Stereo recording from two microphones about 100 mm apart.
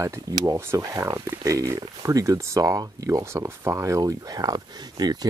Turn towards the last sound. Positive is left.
turn(degrees=-40)  # may be behind; listen again after turning